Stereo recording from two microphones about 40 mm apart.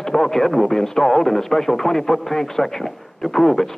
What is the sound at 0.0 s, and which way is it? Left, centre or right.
Speech, centre.